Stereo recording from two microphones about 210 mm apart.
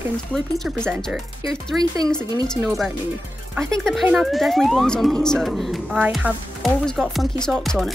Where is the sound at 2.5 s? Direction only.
Centre (ahead or behind).